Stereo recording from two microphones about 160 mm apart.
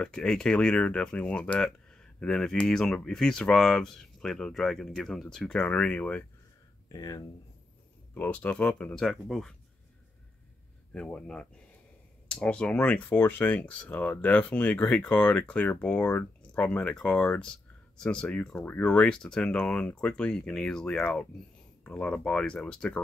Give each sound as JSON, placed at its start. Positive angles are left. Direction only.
{"t": 0.0, "sound": "speech", "side_deg": 5}
{"t": 6.9, "sound": "speech", "side_deg": 25}
{"t": 8.1, "sound": "speech", "side_deg": 10}
{"t": 10.9, "sound": "speech", "side_deg": 5}